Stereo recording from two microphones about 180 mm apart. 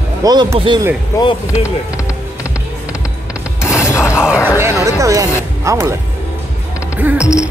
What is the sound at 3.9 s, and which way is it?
Mechanisms, 15° left (ahead or behind).